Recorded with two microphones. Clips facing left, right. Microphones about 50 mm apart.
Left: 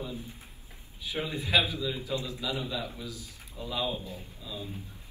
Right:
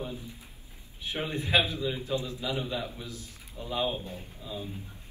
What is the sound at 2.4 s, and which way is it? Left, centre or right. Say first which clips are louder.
Speech: right 1 dB; right.